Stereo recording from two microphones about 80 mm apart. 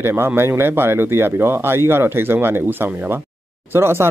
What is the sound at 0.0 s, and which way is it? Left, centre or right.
Speech, right.